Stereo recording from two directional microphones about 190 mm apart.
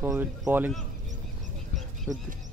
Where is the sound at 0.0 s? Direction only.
10° right (ahead or behind).